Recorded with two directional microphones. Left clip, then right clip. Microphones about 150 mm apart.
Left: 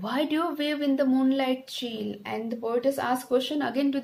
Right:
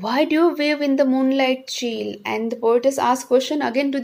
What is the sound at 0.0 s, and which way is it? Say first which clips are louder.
A woman's voice: right 9 dB; 30° right (ahead or behind).